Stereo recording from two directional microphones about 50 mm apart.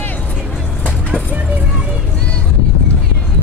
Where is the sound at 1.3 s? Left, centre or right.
Right.